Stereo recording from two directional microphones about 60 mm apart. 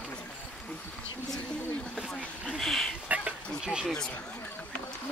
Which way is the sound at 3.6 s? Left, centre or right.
Centre.